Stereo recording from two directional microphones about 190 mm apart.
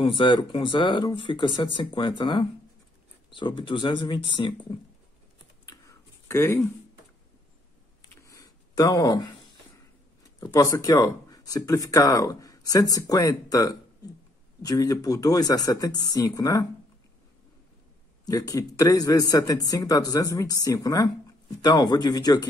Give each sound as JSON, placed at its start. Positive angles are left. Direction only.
{"t": 0.0, "sound": "speech", "side_deg": 25}
{"t": 5.7, "sound": "writing", "side_deg": 15}
{"t": 8.0, "sound": "a sound", "side_deg": 15}
{"t": 10.4, "sound": "speech", "side_deg": 15}
{"t": 18.2, "sound": "speech", "side_deg": 20}